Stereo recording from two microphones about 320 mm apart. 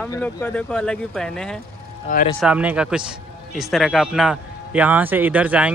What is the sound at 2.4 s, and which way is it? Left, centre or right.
Speech, centre.